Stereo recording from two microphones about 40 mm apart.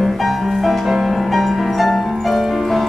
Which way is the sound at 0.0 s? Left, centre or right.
Centre.